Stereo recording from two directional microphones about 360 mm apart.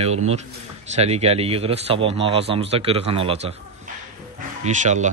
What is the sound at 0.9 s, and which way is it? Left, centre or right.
A man's voice, centre.